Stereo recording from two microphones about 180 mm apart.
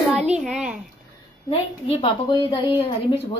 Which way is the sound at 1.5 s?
30° left (ahead or behind).